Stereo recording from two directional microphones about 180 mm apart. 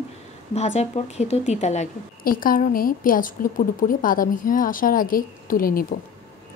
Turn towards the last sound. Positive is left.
turn(degrees=50)  # may be behind; listen again after turning